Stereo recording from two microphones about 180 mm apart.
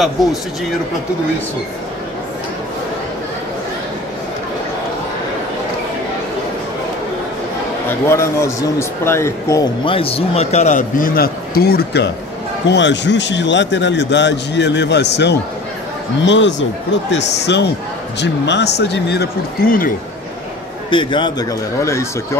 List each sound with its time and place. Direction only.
8.1 s speech: 15° left (ahead or behind)
9.8 s a man's voice: 30° left (ahead or behind); by 12.1 s 65° left (ahead or behind)
12.6 s a man's voice: 75° left (ahead or behind)
16.3 s speech: 90° left
17.1 s a man's voice: 70° left (ahead or behind); by 19.9 s 55° left (ahead or behind)
20.9 s speech: 25° left (ahead or behind)